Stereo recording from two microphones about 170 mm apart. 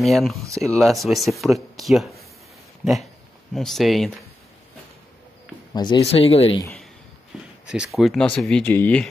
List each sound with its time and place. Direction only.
0.0 s speech: centre (ahead or behind)
5.7 s speech: 25° left (ahead or behind)
7.6 s speech: 5° right (ahead or behind)